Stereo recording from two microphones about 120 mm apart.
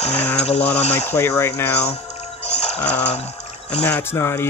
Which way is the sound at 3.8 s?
10° left (ahead or behind).